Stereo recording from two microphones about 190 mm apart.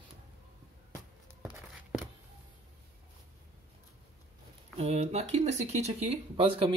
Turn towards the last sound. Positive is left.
turn(degrees=-30)  # may be behind; listen again after turning